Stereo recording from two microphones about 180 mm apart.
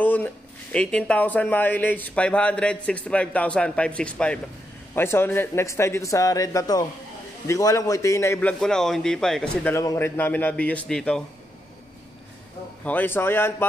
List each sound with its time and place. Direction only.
0.0 s speech: 10° left (ahead or behind)
12.8 s speech: 10° left (ahead or behind)